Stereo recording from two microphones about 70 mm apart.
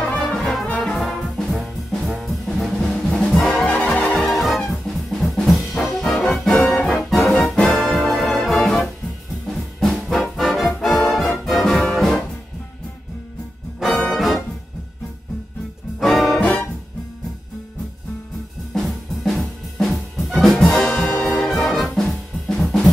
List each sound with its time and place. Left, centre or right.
0.0 s music: centre
0.7 s brass instrument: centre
3.6 s music: centre
4.2 s brass instrument: centre
7.3 s music: centre
9.8 s brass instrument: centre
10.2 s music: centre
13.7 s music: centre
16.0 s music: centre
18.7 s music: centre
21.3 s brass instrument: centre